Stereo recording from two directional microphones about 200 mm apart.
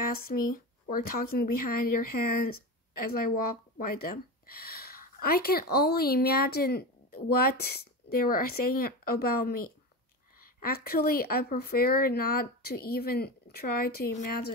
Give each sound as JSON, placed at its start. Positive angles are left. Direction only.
{"t": 0.0, "sound": "a woman's voice", "side_deg": 50}